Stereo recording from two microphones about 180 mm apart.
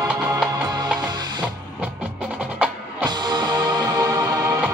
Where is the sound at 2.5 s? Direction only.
10° right (ahead or behind).